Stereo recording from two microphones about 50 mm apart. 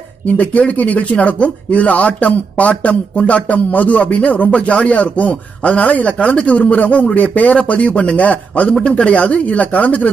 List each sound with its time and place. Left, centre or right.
0.3 s a man's voice: left